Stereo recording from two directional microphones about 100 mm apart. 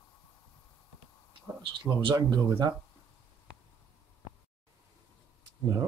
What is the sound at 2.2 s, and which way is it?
Speech, 40° right (ahead or behind).